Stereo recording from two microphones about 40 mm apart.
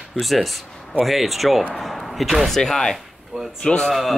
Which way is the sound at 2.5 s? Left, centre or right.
Centre.